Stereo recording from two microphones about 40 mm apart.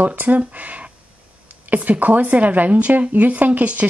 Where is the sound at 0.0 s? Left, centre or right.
Right.